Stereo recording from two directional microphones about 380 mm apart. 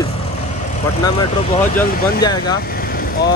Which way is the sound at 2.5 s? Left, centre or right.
Left.